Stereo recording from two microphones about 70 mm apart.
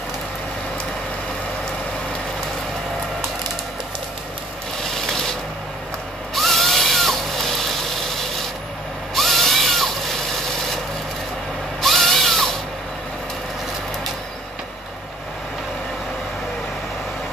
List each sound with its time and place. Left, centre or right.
4.9 s a sound: centre
6.3 s vehicle: centre
9.1 s tools: centre
11.8 s drill: centre